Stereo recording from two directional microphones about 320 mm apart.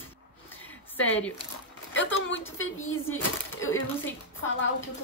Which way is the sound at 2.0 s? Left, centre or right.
Left.